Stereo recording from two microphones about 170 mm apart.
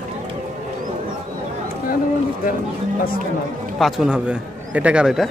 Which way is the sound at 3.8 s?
5° right (ahead or behind).